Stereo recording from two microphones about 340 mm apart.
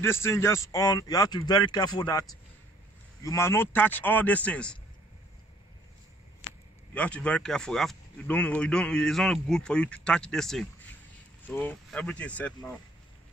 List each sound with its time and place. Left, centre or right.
0.0 s a man's voice: centre
3.3 s speech: centre
6.4 s a sound: left
6.9 s speech: centre